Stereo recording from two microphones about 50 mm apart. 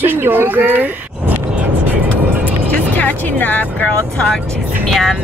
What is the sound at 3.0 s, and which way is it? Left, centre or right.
Speech, left.